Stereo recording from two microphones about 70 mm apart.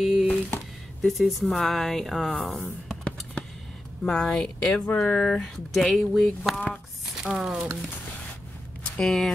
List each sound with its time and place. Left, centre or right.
0.0 s a sound: centre
1.0 s speech: centre
2.6 s a sound: centre
4.0 s speech: centre
5.0 s speech: centre
5.4 s speech: centre
8.9 s speech: centre